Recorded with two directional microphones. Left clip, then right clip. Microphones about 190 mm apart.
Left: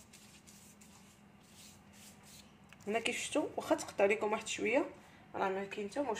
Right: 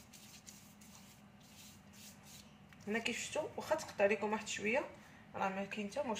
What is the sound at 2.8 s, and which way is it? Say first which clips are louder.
Speech: left 3 dB; 50° left (ahead or behind).